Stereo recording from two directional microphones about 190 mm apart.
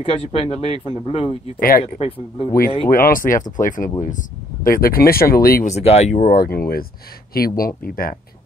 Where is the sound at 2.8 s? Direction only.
50° left (ahead or behind).